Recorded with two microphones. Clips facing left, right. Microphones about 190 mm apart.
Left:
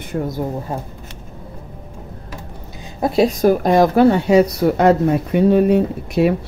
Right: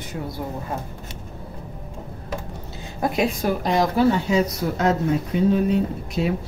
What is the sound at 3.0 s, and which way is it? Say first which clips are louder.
Speech: left 6 dB; 35° left (ahead or behind).